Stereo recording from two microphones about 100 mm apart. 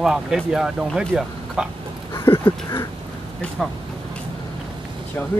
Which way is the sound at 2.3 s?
25° left (ahead or behind).